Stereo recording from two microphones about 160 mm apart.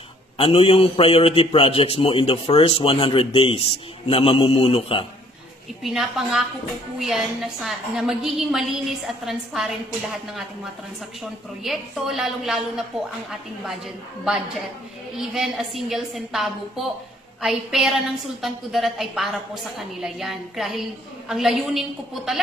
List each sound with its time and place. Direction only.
0.4 s a man's voice: 35° left (ahead or behind)
5.8 s a woman's voice: centre (ahead or behind)
15.1 s a woman's voice: centre (ahead or behind)